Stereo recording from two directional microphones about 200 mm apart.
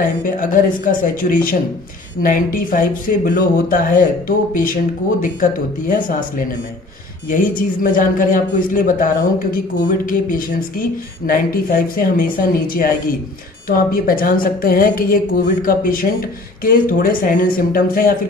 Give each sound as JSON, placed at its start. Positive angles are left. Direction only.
{"t": 0.0, "sound": "a woman's voice", "side_deg": 40}
{"t": 5.2, "sound": "a woman's voice", "side_deg": 40}